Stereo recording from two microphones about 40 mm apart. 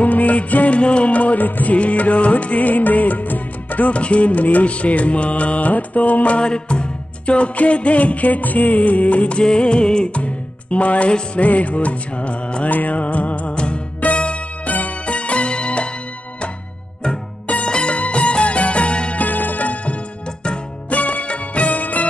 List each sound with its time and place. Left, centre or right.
0.0 s music: left
6.4 s music: left
9.4 s music: left
11.4 s music: left
12.6 s music: left
17.6 s music: left
19.2 s music: left
20.9 s music of bollywood: left